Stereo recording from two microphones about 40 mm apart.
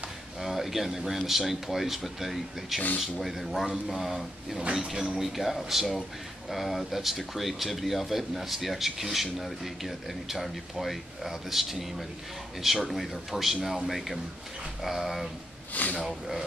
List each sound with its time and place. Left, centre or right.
0.4 s speech: centre
15.8 s speech: left
16.1 s speech: centre